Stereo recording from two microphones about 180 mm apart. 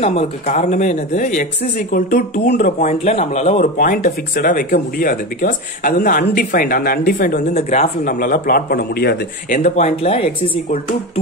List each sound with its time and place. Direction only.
0.0 s speech: 35° left (ahead or behind)
3.7 s speech: 55° left (ahead or behind)
7.5 s speech: 40° left (ahead or behind); by 9.6 s 60° left (ahead or behind)
9.6 s speech: 40° left (ahead or behind)